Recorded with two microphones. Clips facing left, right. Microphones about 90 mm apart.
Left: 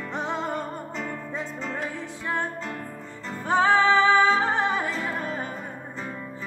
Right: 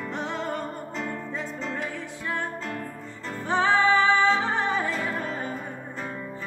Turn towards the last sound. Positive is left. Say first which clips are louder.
# even
turn(degrees=20)  # may be behind; listen again after turning